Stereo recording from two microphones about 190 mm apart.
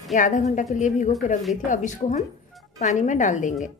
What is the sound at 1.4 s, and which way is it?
Speech, centre (ahead or behind).